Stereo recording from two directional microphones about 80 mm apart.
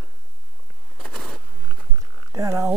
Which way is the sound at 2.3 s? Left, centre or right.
Right.